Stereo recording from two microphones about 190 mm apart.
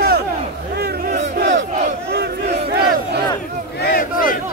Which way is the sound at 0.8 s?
55° right (ahead or behind).